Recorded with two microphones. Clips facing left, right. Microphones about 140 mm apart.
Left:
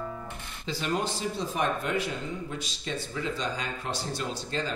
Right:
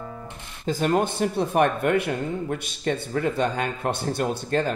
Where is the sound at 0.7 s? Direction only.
50° right (ahead or behind).